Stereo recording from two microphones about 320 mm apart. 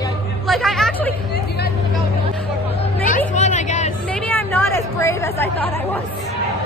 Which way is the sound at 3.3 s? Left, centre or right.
Left.